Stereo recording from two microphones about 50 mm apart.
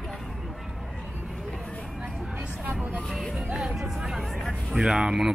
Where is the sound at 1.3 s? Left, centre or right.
Centre.